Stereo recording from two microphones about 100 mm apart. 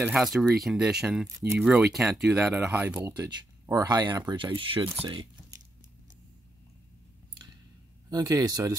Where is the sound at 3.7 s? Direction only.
40° right (ahead or behind).